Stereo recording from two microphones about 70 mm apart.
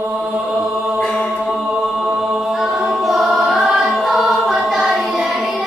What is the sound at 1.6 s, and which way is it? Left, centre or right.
A capella, centre.